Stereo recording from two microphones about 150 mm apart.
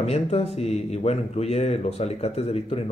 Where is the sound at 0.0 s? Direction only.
45° left (ahead or behind).